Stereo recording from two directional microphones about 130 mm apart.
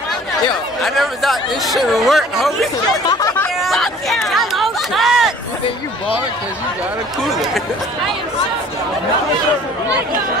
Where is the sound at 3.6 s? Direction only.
Centre (ahead or behind).